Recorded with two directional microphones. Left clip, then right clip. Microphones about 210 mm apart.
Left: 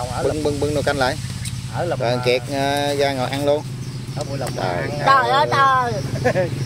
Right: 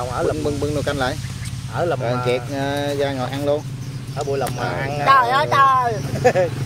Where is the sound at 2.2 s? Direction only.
25° left (ahead or behind).